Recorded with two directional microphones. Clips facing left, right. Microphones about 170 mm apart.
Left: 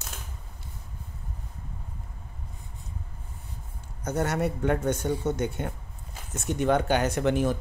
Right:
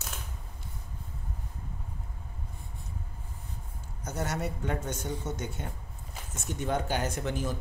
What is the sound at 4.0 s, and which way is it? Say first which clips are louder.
Speech: left 7 dB; 60° left (ahead or behind).